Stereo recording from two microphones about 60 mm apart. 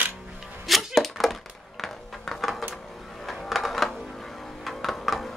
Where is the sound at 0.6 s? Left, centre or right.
Centre.